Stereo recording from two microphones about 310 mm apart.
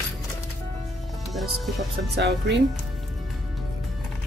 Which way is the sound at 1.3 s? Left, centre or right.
Centre.